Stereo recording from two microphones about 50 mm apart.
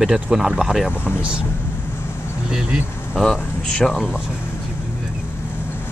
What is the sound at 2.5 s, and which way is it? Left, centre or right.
Speech, centre.